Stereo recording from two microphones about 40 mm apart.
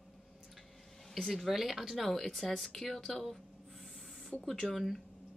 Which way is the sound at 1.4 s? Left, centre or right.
Centre.